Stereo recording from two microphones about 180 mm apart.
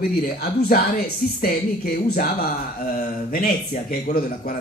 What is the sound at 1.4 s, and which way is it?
Speech, 55° left (ahead or behind).